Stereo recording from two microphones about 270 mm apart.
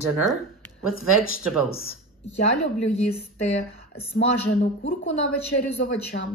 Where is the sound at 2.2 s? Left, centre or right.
Left.